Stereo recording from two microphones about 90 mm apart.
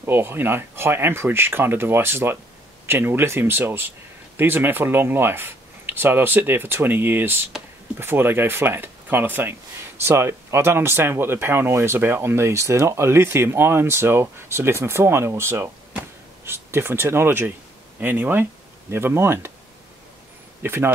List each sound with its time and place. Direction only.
0.0 s speech: 25° right (ahead or behind)
20.6 s speech: 25° right (ahead or behind)